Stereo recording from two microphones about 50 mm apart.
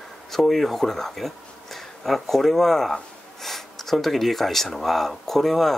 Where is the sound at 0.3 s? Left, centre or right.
Centre.